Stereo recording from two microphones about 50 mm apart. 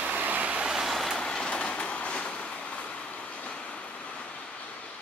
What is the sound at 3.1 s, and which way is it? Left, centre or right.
Vehicle, left.